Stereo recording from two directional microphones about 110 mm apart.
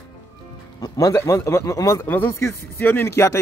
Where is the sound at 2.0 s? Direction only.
15° left (ahead or behind).